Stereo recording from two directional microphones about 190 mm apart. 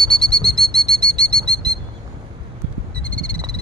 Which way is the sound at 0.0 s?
5° left (ahead or behind).